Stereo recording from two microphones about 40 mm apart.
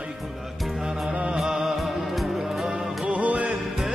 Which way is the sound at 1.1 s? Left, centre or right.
Right.